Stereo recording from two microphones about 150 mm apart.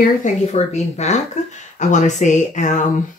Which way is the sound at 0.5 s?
50° left (ahead or behind).